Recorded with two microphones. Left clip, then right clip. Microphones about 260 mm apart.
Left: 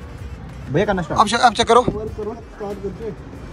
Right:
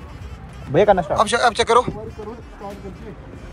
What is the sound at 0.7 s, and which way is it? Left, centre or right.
Speech, right.